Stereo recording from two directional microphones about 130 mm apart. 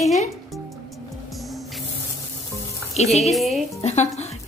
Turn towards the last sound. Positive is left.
turn(degrees=60)  # may be behind; listen again after turning